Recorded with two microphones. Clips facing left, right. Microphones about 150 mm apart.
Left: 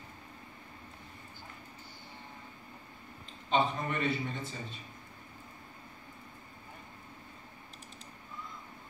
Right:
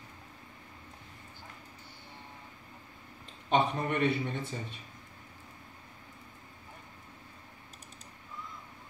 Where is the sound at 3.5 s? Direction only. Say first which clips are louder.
Right 2 dB; 65° right (ahead or behind).